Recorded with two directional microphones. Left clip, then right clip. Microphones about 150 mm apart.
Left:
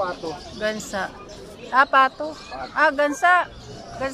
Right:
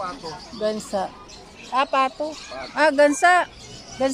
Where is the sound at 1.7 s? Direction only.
25° right (ahead or behind).